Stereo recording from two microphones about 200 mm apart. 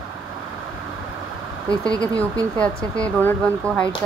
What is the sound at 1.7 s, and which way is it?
Speech, 20° right (ahead or behind).